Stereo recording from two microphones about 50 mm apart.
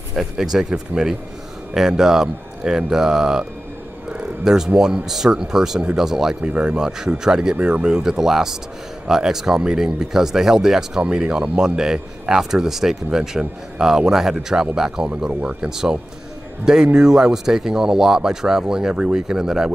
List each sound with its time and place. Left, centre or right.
0.4 s speech: centre
4.7 s speech: centre
6.4 s speech: right
6.8 s speech: centre